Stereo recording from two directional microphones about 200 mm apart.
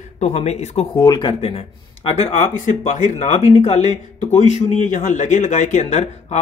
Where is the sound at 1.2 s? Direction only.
30° left (ahead or behind).